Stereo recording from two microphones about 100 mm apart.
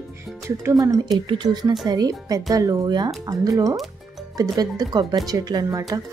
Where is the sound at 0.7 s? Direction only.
40° right (ahead or behind).